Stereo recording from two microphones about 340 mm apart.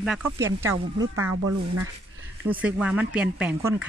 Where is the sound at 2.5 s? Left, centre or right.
Centre.